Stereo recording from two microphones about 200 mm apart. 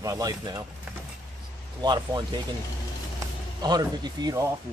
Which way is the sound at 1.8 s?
20° right (ahead or behind).